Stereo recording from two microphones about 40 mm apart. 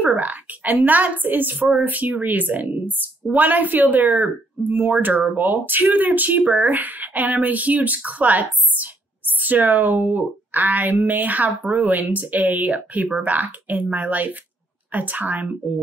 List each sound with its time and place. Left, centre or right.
0.0 s a woman's voice: right